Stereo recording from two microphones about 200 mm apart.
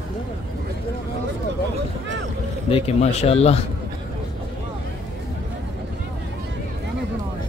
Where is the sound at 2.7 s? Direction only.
30° left (ahead or behind).